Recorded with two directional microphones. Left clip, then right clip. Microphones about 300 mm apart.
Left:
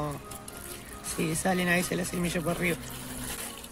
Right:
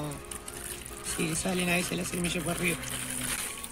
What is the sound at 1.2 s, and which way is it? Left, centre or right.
Speech, centre.